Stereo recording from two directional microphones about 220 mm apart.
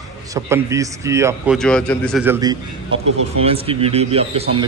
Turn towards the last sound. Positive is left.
turn(degrees=-25)  # may be behind; listen again after turning